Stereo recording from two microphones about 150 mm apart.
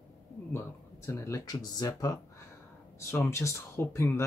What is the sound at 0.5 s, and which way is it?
Speech, 20° left (ahead or behind).